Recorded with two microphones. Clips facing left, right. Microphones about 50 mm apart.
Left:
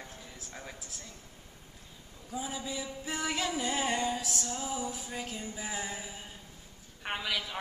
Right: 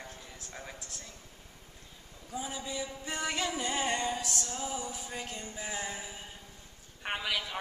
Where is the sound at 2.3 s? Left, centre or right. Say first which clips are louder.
Even; centre.